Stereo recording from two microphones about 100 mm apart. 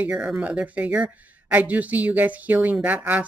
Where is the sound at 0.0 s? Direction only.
15° right (ahead or behind).